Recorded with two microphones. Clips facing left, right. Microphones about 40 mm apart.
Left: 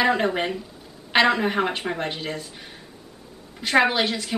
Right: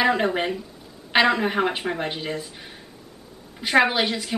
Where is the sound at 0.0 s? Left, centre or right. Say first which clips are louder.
Even; centre.